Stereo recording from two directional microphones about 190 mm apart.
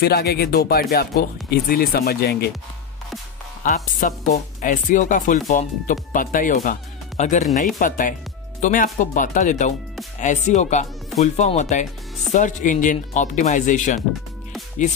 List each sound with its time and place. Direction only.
0.0 s speech: 55° left (ahead or behind)
3.6 s speech: 45° left (ahead or behind)